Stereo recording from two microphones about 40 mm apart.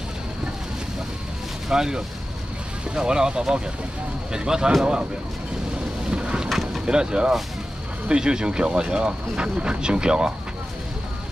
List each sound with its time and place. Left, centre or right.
1.7 s speech: centre
6.0 s boat: right
6.5 s vehicle: centre
6.9 s speech: right